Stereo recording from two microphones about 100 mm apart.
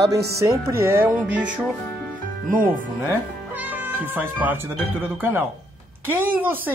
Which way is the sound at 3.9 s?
15° right (ahead or behind).